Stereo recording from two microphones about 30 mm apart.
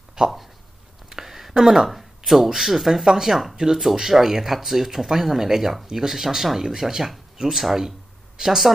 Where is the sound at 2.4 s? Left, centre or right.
Centre.